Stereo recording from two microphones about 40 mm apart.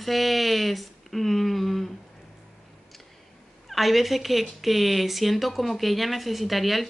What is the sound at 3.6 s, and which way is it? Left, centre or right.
Speech, centre.